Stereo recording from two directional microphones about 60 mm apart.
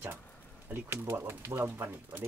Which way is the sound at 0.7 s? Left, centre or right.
Right.